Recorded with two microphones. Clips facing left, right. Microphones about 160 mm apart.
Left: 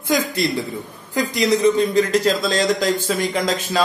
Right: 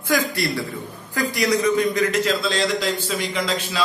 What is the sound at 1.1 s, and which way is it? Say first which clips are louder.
A man's voice: left 3 dB; 20° left (ahead or behind).